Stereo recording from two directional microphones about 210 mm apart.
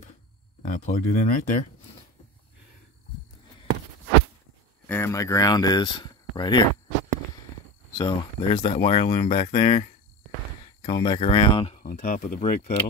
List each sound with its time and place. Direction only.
0.6 s speech: 35° left (ahead or behind)
4.8 s speech: 10° left (ahead or behind)
8.0 s speech: 25° left (ahead or behind)
11.8 s speech: 40° left (ahead or behind)